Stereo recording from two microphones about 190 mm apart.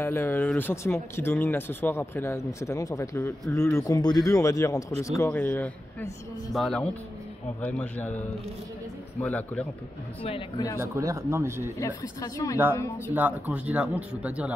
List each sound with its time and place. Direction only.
0.0 s speech: 10° left (ahead or behind)
9.2 s speech: 10° left (ahead or behind)
10.8 s speech: 15° right (ahead or behind)
11.8 s speech: 15° left (ahead or behind)
13.1 s speech: 10° right (ahead or behind)